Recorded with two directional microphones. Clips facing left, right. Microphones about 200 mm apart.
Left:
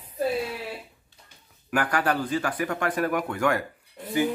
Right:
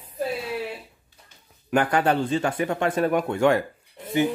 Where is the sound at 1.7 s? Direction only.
25° right (ahead or behind).